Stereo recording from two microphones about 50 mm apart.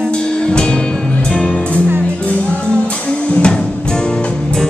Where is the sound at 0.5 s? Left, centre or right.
Centre.